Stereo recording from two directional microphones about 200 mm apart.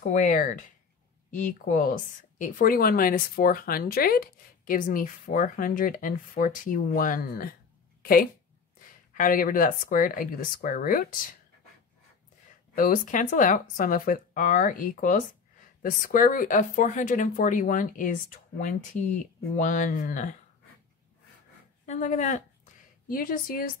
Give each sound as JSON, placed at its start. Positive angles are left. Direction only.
{"t": 0.1, "sound": "a woman's voice", "side_deg": 40}
{"t": 12.7, "sound": "speech", "side_deg": 45}
{"t": 21.8, "sound": "speech", "side_deg": 35}